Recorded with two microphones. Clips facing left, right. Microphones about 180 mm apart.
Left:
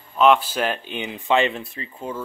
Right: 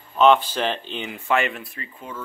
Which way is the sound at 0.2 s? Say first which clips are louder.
Even; 5° left (ahead or behind).